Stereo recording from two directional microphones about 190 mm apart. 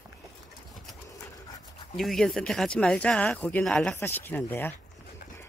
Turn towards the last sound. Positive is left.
turn(degrees=10)  # may be behind; listen again after turning